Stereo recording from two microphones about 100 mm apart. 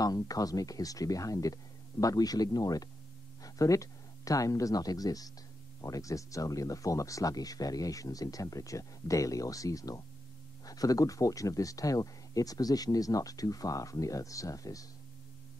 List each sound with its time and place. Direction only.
0.0 s speech: 40° left (ahead or behind)